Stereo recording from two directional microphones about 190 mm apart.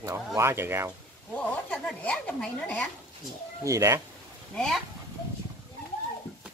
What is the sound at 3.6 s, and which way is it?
Speech, 15° right (ahead or behind).